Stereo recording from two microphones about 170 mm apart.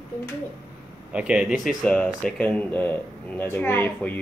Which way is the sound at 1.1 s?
5° right (ahead or behind).